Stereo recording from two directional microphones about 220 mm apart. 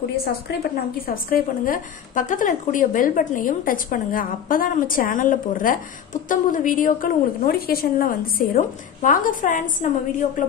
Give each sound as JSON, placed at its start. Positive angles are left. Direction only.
{"t": 0.1, "sound": "a woman's voice", "side_deg": 45}